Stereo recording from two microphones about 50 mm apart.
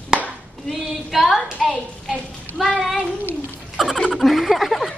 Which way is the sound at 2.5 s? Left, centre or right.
Left.